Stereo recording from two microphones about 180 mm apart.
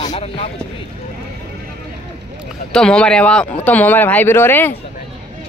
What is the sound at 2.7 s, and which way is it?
Speech, 5° left (ahead or behind).